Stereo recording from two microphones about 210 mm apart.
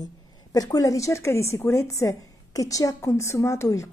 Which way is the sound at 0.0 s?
20° left (ahead or behind).